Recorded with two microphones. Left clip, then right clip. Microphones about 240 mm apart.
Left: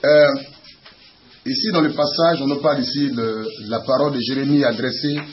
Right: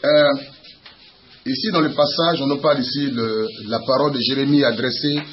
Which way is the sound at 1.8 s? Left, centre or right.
Centre.